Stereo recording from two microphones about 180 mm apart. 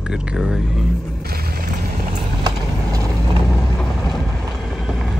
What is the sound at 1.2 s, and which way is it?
Music, 55° right (ahead or behind).